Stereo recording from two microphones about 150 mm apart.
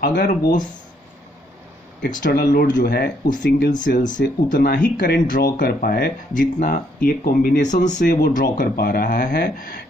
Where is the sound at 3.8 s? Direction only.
60° left (ahead or behind).